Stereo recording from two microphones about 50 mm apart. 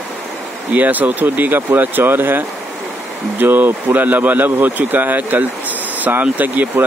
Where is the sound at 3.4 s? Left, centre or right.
Right.